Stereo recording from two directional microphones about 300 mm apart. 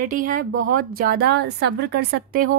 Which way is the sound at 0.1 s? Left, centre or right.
Right.